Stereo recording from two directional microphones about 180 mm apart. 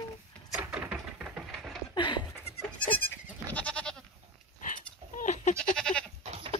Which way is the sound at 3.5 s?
5° left (ahead or behind).